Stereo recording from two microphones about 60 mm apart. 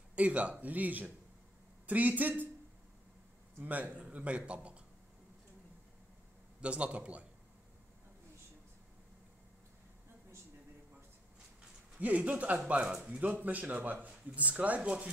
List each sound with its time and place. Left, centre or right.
0.1 s speech: right
3.6 s speech: right
6.6 s speech: right
12.0 s speech: right
12.8 s speech: centre
13.2 s speech: right